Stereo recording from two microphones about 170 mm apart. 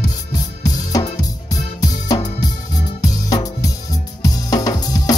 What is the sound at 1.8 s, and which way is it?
Music, 20° left (ahead or behind).